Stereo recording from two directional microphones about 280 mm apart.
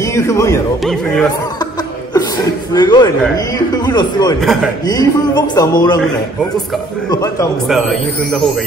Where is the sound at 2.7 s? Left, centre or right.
Centre.